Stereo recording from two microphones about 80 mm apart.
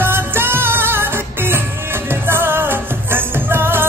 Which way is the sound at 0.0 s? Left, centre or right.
Right.